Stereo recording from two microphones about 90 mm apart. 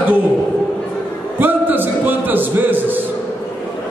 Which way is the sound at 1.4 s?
20° right (ahead or behind).